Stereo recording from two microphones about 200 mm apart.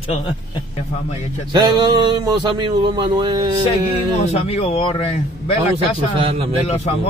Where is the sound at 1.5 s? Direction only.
20° right (ahead or behind).